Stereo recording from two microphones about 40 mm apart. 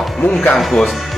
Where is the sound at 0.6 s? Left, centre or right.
Centre.